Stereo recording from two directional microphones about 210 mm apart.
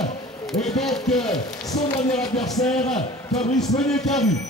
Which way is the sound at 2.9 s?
35° left (ahead or behind).